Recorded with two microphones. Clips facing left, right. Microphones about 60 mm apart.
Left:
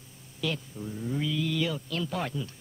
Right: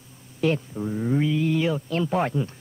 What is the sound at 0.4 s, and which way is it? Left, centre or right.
Speech, right.